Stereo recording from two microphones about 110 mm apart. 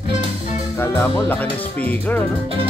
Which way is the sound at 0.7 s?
20° left (ahead or behind).